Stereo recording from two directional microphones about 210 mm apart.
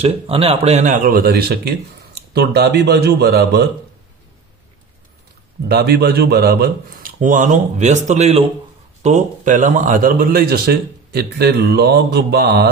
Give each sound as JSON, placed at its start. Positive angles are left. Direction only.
{"t": 0.0, "sound": "speech", "side_deg": -25}
{"t": 5.7, "sound": "speech", "side_deg": -50}